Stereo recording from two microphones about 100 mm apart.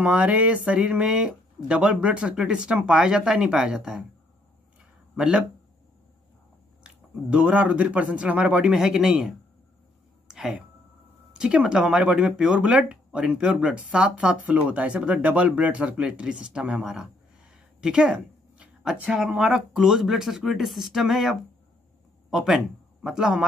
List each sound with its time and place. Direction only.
0.0 s speech: 15° right (ahead or behind)
5.1 s speech: 5° right (ahead or behind)
6.8 s speech: 10° right (ahead or behind)
10.2 s a sound: 5° right (ahead or behind)
11.3 s a woman's voice: 10° right (ahead or behind)